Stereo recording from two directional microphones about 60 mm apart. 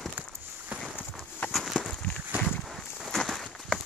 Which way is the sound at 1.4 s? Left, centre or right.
Centre.